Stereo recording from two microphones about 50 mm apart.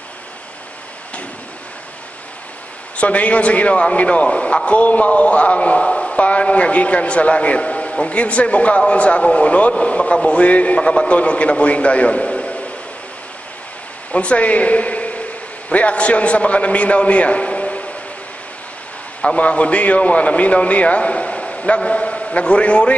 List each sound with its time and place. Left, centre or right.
3.0 s a man's voice: left
14.1 s a man's voice: left
19.2 s a man's voice: left